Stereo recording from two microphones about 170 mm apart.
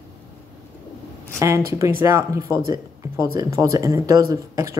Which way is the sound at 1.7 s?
15° right (ahead or behind).